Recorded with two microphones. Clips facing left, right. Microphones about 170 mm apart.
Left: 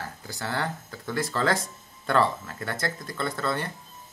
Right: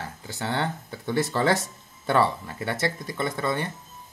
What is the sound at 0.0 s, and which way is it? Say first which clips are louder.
Speech: right 2 dB; 25° right (ahead or behind).